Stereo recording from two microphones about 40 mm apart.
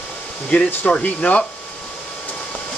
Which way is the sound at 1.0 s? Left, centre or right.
Left.